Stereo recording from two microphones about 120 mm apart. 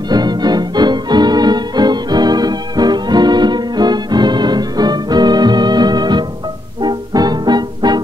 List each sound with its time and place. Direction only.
0.1 s music: 35° right (ahead or behind)